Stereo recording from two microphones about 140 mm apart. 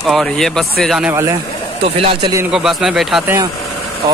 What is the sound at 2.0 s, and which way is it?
Speech, 40° right (ahead or behind).